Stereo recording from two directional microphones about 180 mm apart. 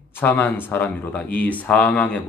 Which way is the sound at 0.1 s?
10° left (ahead or behind).